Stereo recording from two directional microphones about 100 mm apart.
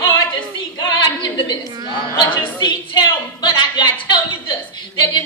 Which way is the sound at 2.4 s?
50° left (ahead or behind).